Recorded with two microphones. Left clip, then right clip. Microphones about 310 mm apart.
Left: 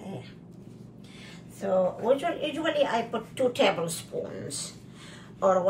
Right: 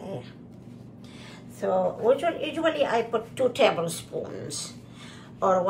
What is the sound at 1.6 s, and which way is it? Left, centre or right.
Speech, centre.